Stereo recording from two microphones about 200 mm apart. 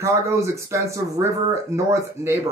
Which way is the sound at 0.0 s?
15° right (ahead or behind).